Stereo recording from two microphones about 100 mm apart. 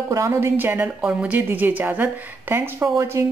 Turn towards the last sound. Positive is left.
turn(degrees=-30)  # may be behind; listen again after turning